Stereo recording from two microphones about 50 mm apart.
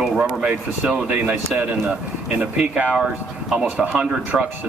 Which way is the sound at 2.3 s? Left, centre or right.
Right.